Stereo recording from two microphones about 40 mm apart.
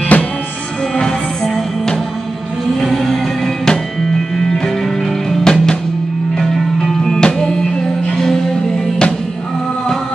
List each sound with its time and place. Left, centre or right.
0.1 s music: left
0.9 s music: centre
5.3 s music: centre